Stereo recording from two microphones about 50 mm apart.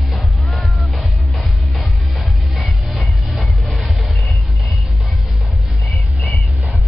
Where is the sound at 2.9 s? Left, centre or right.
Centre.